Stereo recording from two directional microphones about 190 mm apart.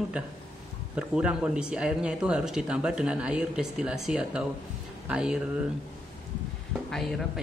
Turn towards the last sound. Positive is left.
turn(degrees=0)  # may be behind; listen again after turning